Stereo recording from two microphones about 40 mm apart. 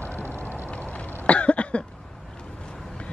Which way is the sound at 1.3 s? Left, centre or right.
Left.